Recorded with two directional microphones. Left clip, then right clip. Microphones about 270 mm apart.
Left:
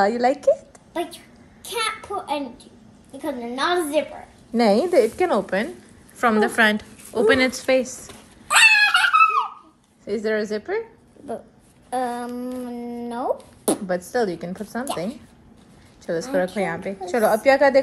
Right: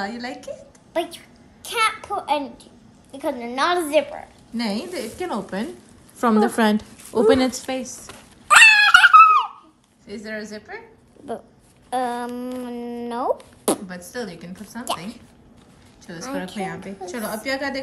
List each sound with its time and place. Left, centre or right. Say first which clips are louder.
0.0 s a woman's voice: left 12 dB; centre
6.1 s a woman's voice: left 1 dB; right
7.2 s fowl: right 1 dB; centre
10.0 s speech: left 9 dB; centre